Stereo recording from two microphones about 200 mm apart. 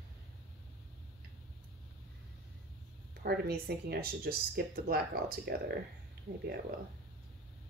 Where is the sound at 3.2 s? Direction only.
50° right (ahead or behind).